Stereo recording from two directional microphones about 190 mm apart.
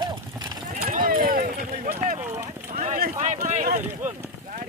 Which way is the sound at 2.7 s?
45° right (ahead or behind).